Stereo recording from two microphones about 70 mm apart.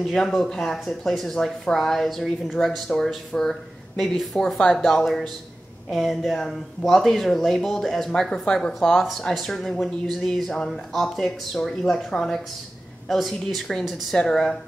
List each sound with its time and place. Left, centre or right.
0.0 s speech: centre